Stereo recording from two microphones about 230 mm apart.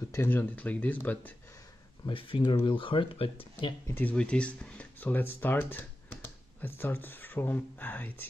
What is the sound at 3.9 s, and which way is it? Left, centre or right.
Speech, centre.